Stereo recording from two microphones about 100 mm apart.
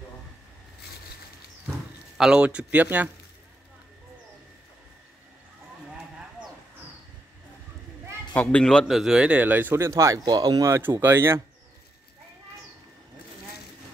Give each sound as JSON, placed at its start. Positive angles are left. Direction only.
{"t": 2.1, "sound": "speech", "side_deg": -10}
{"t": 8.4, "sound": "a man's voice", "side_deg": 10}
{"t": 8.8, "sound": "speech", "side_deg": -5}
{"t": 10.2, "sound": "speech", "side_deg": -45}
{"t": 11.0, "sound": "speech", "side_deg": -25}